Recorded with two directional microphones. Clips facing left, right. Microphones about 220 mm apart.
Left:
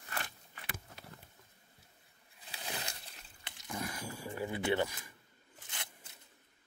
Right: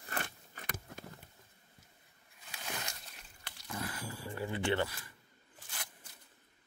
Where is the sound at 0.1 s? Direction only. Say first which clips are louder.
Right 3 dB; 40° right (ahead or behind).